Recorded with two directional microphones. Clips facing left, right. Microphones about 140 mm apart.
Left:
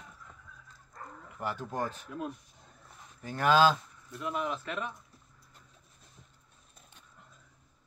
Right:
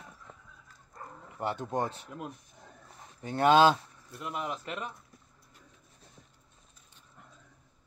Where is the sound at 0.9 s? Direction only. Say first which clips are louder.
Right 2 dB; 25° right (ahead or behind).